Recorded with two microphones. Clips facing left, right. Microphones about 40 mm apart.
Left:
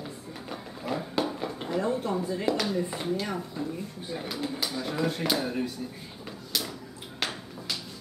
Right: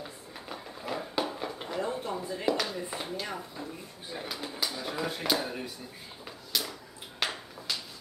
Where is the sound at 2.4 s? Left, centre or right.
Centre.